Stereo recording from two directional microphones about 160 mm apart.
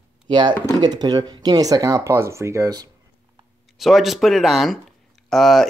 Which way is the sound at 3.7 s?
Centre (ahead or behind).